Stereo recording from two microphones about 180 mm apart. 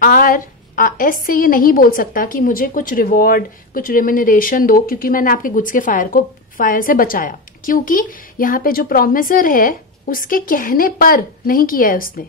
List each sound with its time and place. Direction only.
0.0 s a woman's voice: 50° left (ahead or behind)